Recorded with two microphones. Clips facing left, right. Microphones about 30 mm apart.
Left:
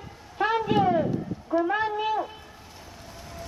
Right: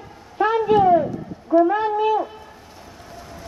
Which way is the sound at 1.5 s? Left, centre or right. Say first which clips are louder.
Right 9 dB; centre.